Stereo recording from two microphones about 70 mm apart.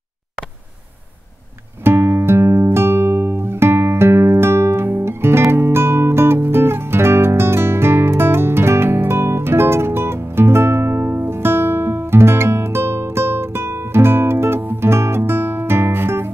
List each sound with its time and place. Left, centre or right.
1.8 s music: right